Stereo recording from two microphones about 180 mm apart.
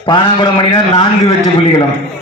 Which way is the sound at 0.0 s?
25° left (ahead or behind).